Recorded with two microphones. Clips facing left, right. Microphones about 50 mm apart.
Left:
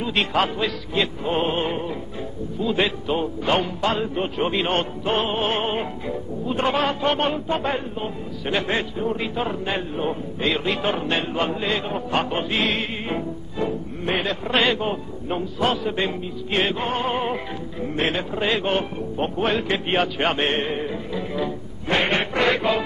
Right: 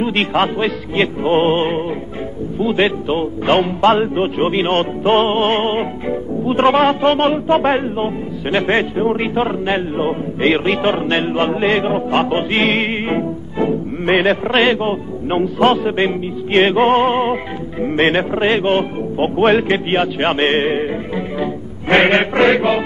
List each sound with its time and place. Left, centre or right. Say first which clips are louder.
0.0 s a man's voice: right 6 dB; right
15.2 s a man's voice: right 9 dB; right
17.8 s a man's voice: right 9 dB; right
19.9 s a man's voice: right 5 dB; right
21.4 s music: right 5 dB; right